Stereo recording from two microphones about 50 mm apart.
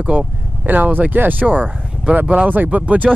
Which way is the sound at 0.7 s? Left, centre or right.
Right.